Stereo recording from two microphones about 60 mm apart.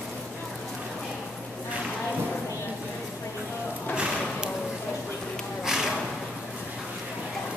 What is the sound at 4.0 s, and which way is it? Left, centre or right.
Clip-clop, centre.